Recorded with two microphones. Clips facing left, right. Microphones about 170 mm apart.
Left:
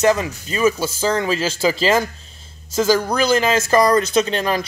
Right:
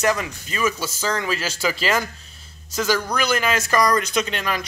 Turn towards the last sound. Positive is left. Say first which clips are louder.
# left 6 dB
turn(degrees=35)  # may be behind; listen again after turning